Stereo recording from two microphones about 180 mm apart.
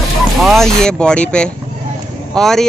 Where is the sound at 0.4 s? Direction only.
Centre (ahead or behind).